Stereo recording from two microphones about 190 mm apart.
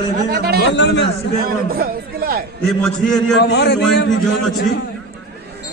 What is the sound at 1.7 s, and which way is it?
Speech, 50° right (ahead or behind).